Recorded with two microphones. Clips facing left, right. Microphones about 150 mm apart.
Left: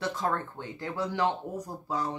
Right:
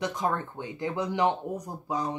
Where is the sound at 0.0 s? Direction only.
15° right (ahead or behind).